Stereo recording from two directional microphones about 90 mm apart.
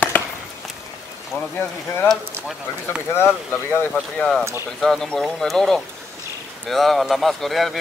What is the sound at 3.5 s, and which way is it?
Speech, 20° left (ahead or behind).